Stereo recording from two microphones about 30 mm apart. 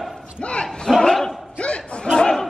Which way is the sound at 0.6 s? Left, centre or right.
Left.